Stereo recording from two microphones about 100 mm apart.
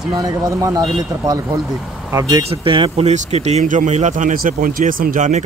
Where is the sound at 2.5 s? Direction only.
60° right (ahead or behind); by 4.0 s 90° right.